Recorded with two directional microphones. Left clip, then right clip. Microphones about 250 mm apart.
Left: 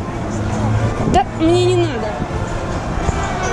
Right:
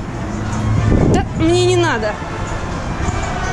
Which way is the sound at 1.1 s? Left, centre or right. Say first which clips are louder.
Left 5 dB; centre.